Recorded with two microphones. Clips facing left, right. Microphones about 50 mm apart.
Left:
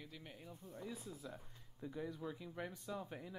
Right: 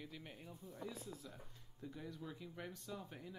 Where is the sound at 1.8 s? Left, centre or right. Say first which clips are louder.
Left 4 dB; centre.